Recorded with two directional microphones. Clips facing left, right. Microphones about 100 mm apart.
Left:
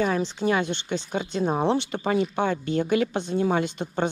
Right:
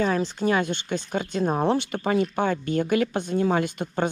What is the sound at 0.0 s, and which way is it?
Speech, 45° right (ahead or behind).